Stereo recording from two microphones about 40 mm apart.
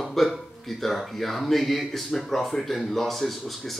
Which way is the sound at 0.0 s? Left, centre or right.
Centre.